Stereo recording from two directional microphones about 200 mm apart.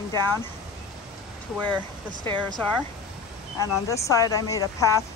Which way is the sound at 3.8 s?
15° left (ahead or behind).